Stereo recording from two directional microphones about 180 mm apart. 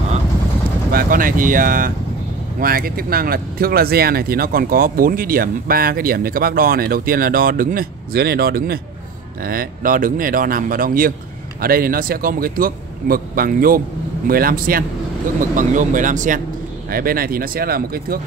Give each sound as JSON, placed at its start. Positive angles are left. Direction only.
{"t": 0.9, "sound": "a man's voice", "side_deg": -50}